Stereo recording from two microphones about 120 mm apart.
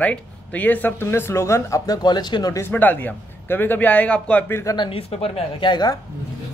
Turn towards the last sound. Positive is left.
turn(degrees=35)  # may be behind; listen again after turning